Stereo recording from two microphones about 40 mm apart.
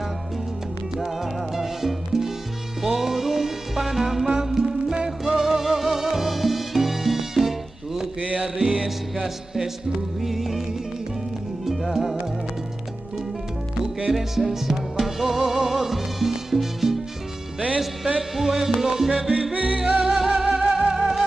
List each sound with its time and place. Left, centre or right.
0.9 s music: centre
8.4 s salsa music: centre
8.8 s music: centre
11.6 s music: centre
13.7 s music: centre
15.4 s salsa music: centre
18.3 s salsa music: centre
19.5 s music: right
20.0 s music: centre